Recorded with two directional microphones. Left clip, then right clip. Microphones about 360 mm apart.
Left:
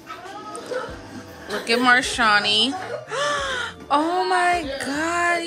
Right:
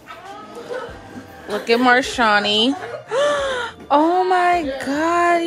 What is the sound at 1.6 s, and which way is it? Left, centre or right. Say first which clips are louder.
Speech: right 2 dB; centre.